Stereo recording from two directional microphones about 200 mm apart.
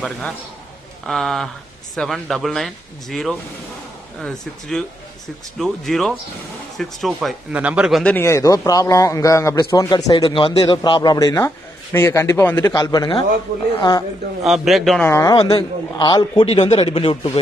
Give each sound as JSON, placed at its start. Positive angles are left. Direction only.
{"t": 1.0, "sound": "a man's voice", "side_deg": 0}
{"t": 14.4, "sound": "speech", "side_deg": 0}
{"t": 15.0, "sound": "a man's voice", "side_deg": 15}